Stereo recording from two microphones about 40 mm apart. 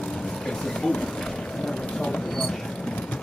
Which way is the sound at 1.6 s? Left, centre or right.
Centre.